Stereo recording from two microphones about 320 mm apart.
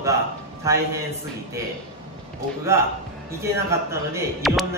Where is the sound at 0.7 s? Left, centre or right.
Centre.